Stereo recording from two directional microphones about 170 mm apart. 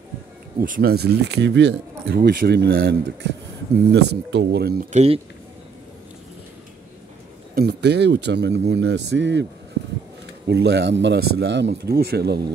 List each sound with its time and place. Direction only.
0.6 s speech: 60° right (ahead or behind)
4.9 s speech: 35° right (ahead or behind)
7.5 s a man's voice: 75° right (ahead or behind)